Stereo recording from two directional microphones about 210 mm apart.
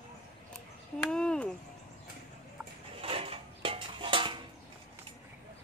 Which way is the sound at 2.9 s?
25° right (ahead or behind).